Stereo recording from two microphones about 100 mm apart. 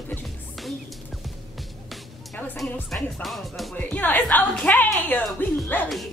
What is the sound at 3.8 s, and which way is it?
Speech, 15° left (ahead or behind).